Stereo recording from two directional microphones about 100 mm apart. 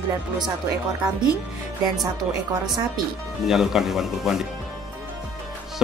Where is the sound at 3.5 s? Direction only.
5° right (ahead or behind).